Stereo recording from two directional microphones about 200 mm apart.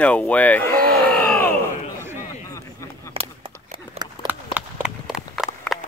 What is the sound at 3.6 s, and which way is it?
Horse, 30° right (ahead or behind).